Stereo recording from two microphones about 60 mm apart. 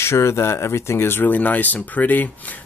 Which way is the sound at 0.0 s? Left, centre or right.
Left.